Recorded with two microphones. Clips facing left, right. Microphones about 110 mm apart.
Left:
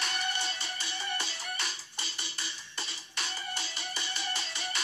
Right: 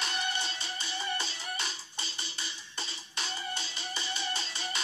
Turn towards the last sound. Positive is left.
turn(degrees=-30)  # may be behind; listen again after turning